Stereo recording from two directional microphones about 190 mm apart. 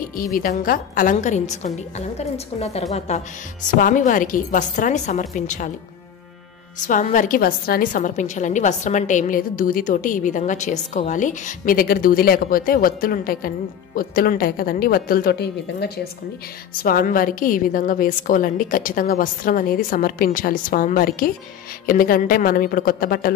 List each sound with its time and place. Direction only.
0.4 s a woman's voice: 50° left (ahead or behind)
6.9 s a woman's voice: 40° left (ahead or behind)